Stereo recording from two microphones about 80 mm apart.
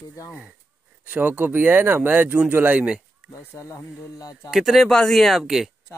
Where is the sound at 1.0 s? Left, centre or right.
Right.